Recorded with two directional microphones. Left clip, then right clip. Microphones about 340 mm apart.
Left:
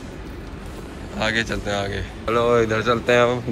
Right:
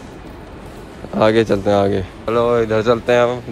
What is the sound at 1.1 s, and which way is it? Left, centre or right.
Speech, centre.